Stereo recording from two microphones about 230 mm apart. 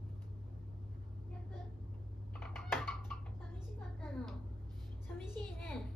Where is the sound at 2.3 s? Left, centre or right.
Centre.